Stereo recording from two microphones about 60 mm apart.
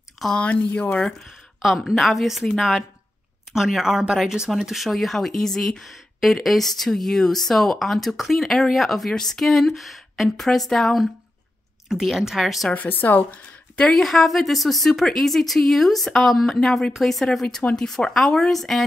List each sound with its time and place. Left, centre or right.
0.2 s speech: centre
1.6 s speech: centre
12.7 s a woman's voice: left
13.8 s speech: centre